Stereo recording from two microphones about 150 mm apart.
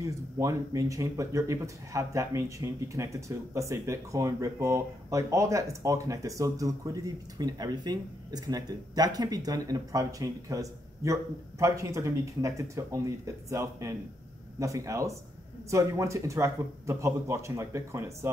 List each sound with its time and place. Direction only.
0.0 s speech: 20° right (ahead or behind)